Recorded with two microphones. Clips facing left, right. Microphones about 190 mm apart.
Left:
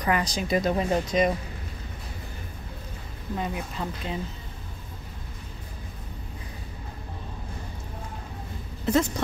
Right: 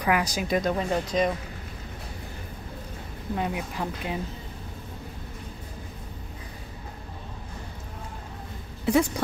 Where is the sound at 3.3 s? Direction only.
10° right (ahead or behind).